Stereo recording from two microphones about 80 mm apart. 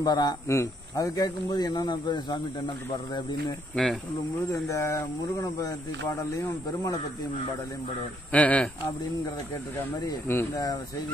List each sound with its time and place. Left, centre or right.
0.0 s speech: left
0.5 s speech: left
3.7 s speech: centre
4.5 s speech: left
8.3 s speech: centre